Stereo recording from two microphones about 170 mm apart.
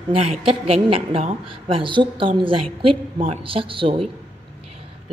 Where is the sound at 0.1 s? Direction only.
35° right (ahead or behind).